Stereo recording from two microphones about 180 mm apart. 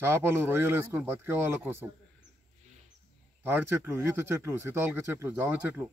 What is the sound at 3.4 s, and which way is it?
A man's voice, 10° right (ahead or behind).